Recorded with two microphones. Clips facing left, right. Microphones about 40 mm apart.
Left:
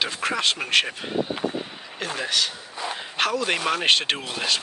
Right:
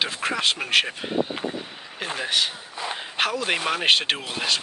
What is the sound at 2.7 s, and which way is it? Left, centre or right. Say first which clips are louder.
Speech: even; centre.